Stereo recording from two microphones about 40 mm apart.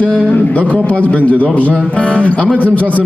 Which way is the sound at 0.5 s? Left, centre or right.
Left.